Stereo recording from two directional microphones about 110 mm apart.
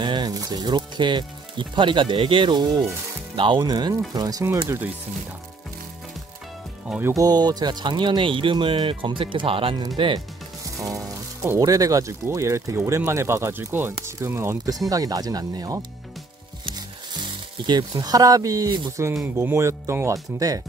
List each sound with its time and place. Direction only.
0.0 s speech: 40° right (ahead or behind)
7.2 s speech: 35° right (ahead or behind)
10.6 s music: 30° right (ahead or behind)
11.6 s speech: 30° right (ahead or behind)
17.2 s speech: 40° right (ahead or behind)